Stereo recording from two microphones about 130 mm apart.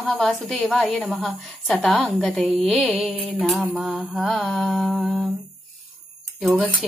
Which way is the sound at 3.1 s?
45° right (ahead or behind).